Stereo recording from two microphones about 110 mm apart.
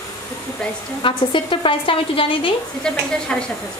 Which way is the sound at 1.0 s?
50° left (ahead or behind).